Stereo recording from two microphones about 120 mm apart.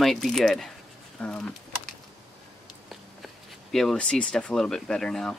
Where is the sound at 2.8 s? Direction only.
Centre (ahead or behind).